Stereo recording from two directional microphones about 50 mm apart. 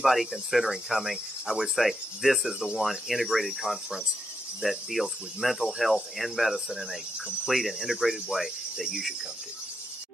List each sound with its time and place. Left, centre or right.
0.0 s cricket: centre